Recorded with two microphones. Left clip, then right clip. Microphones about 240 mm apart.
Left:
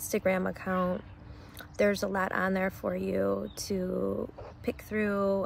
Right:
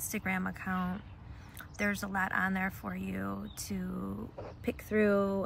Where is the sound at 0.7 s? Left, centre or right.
Left.